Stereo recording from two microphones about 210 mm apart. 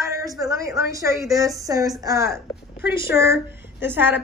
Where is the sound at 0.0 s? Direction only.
15° right (ahead or behind).